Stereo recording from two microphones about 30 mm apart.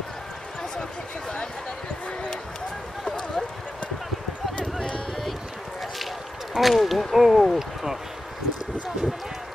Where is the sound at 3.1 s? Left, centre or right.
Centre.